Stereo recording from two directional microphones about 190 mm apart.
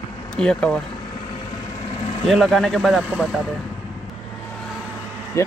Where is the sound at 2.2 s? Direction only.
Centre (ahead or behind).